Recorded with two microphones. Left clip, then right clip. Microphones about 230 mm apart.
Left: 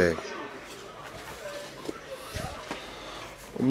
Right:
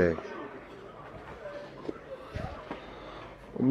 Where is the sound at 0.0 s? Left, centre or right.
Centre.